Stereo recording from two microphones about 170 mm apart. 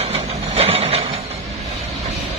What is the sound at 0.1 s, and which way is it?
Vehicle, 35° right (ahead or behind).